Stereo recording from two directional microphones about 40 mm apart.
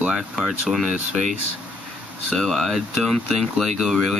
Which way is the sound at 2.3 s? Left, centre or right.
Centre.